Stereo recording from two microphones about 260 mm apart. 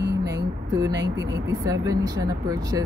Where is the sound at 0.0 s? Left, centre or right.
Right.